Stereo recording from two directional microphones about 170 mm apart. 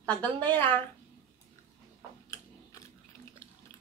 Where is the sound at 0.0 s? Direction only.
10° left (ahead or behind).